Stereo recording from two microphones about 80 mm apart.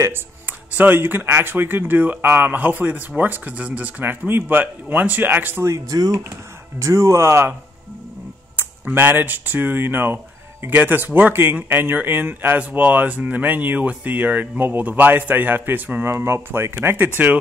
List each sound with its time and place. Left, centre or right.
0.5 s speech: right
5.9 s speech: right
6.8 s speech: right
8.5 s speech: right